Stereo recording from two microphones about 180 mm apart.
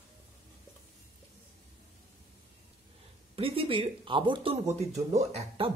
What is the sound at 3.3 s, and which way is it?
Speech, 30° right (ahead or behind).